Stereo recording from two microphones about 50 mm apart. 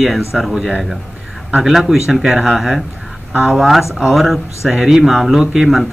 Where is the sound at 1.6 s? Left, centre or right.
Centre.